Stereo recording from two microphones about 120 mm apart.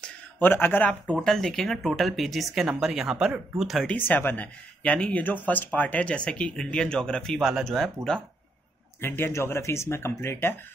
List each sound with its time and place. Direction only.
0.4 s speech: 15° left (ahead or behind)
1.2 s speech: 5° left (ahead or behind)
3.9 s speech: 15° left (ahead or behind)
9.0 s speech: 20° left (ahead or behind)